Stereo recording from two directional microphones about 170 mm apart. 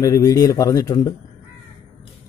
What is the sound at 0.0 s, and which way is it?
A man's voice, 20° left (ahead or behind).